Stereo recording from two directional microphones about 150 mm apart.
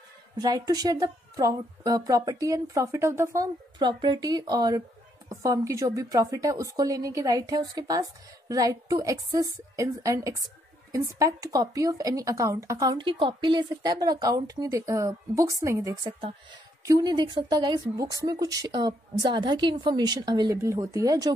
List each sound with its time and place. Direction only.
0.4 s a woman's voice: 25° right (ahead or behind)
3.8 s a woman's voice: 30° right (ahead or behind)
12.9 s a woman's voice: 35° right (ahead or behind)